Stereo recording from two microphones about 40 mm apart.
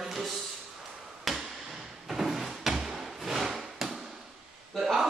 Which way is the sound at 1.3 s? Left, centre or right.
Centre.